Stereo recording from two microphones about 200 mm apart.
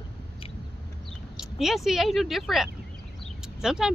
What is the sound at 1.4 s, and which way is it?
Speech, centre (ahead or behind).